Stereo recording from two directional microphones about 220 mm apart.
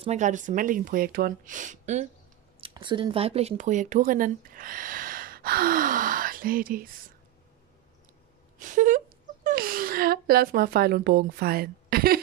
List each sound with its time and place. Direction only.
0.0 s speech: 30° right (ahead or behind)
2.6 s speech: 20° right (ahead or behind); by 6.9 s 40° right (ahead or behind)
8.5 s a sound: 35° right (ahead or behind)